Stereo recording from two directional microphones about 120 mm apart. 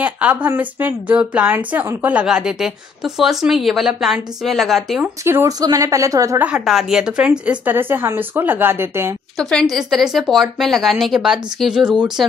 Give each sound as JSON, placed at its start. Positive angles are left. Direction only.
{"t": 0.0, "sound": "a woman's voice", "side_deg": -10}
{"t": 5.2, "sound": "speech", "side_deg": -25}
{"t": 6.4, "sound": "a woman's voice", "side_deg": -5}
{"t": 9.4, "sound": "a woman's voice", "side_deg": 5}